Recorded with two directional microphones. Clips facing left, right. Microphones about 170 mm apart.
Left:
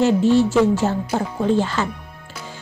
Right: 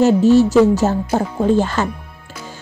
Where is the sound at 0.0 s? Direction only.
40° right (ahead or behind).